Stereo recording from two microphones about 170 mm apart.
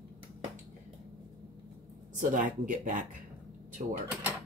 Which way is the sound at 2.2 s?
50° right (ahead or behind).